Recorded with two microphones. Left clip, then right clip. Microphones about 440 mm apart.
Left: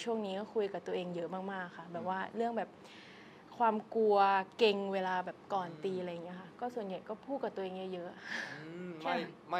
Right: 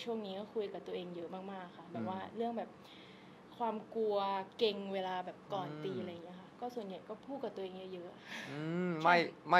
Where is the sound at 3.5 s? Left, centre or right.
Left.